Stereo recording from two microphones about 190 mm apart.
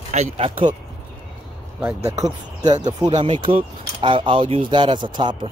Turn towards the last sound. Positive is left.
turn(degrees=-25)  # may be behind; listen again after turning